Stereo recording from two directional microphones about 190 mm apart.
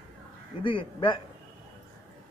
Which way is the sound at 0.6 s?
25° left (ahead or behind).